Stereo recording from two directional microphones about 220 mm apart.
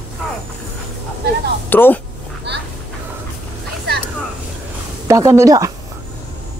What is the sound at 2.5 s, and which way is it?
Duck, 50° right (ahead or behind).